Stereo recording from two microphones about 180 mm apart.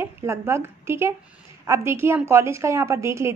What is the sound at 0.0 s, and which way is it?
A woman's voice, 15° right (ahead or behind).